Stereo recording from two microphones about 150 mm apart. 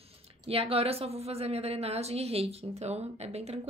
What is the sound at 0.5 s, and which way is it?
A woman's voice, 40° right (ahead or behind).